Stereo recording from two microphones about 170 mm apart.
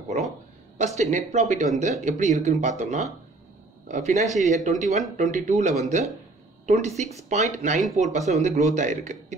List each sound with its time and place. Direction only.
0.9 s speech: 40° right (ahead or behind)